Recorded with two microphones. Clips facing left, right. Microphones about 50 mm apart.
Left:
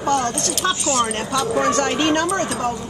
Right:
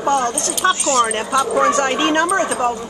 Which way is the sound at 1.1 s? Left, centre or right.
Centre.